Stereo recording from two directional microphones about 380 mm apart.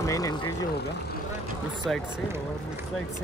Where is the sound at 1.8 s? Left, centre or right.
Centre.